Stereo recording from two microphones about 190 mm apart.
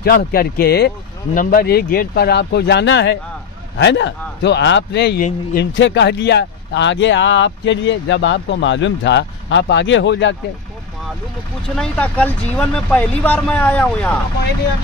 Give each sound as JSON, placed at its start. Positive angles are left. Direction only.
{"t": 0.0, "sound": "speech", "side_deg": 55}
{"t": 5.2, "sound": "speech", "side_deg": 50}
{"t": 5.8, "sound": "speech", "side_deg": 70}
{"t": 11.7, "sound": "speech", "side_deg": 5}